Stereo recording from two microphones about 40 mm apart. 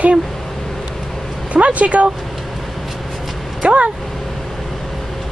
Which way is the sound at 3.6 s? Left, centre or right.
Right.